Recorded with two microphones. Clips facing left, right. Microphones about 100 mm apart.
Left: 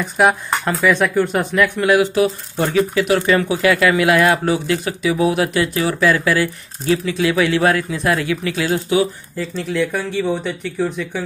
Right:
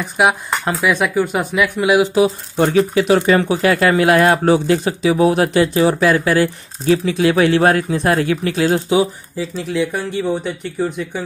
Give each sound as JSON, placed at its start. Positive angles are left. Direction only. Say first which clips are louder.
{"t": 0.0, "sound": "speech", "louder": "even", "side_deg": -10}
{"t": 9.4, "sound": "speech", "louder": "right 1 dB", "side_deg": -5}